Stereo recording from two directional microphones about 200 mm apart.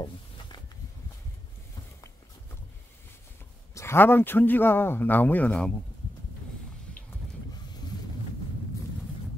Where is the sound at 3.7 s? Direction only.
15° left (ahead or behind).